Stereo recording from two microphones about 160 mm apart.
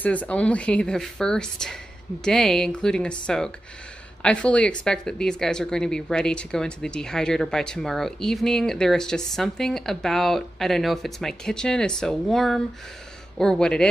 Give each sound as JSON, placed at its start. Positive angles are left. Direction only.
{"t": 0.0, "sound": "a woman's voice", "side_deg": 10}